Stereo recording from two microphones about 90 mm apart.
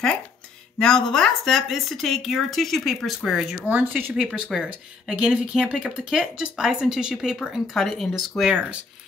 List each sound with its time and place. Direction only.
0.7 s speech: 5° left (ahead or behind)
3.6 s speech: 20° right (ahead or behind)
4.2 s speech: 5° right (ahead or behind)